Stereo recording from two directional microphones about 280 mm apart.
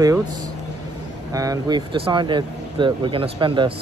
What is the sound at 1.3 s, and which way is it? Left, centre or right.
Speech, centre.